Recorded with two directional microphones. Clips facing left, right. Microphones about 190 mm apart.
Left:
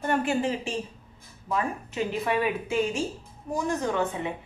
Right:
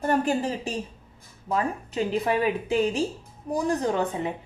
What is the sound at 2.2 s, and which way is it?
A woman's voice, 35° right (ahead or behind).